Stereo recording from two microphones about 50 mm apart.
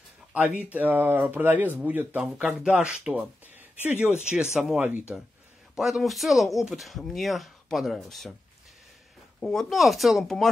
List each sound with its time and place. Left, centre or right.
0.3 s speech: right
1.8 s speech: right
4.5 s speech: centre
5.8 s speech: centre
9.4 s speech: centre
9.7 s speech: centre
10.2 s speech: centre